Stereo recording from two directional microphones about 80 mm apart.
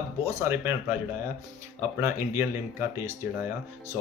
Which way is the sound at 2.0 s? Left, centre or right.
Right.